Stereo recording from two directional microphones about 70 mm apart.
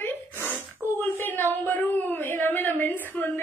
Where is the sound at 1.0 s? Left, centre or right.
Left.